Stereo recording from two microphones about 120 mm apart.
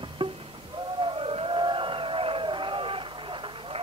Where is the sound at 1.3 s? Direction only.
45° right (ahead or behind).